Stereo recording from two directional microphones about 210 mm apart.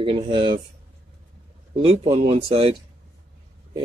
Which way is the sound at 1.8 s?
30° right (ahead or behind).